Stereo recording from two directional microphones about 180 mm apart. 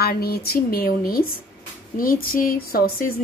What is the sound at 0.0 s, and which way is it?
A woman's voice, 60° left (ahead or behind).